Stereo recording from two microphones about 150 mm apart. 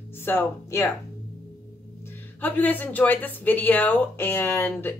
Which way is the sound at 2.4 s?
10° left (ahead or behind).